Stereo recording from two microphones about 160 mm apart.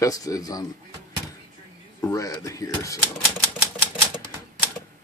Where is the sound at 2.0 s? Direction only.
20° left (ahead or behind).